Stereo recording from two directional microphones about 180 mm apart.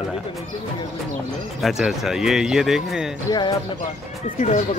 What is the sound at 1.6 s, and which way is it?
Speech, centre (ahead or behind).